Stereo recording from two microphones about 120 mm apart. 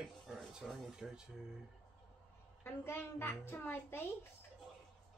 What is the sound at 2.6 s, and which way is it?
A child's voice, 20° left (ahead or behind).